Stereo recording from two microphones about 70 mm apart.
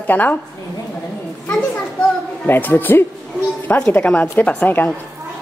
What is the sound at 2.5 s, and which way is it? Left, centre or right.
Speech, left.